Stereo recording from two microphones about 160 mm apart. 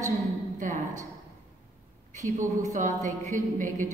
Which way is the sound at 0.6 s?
50° right (ahead or behind).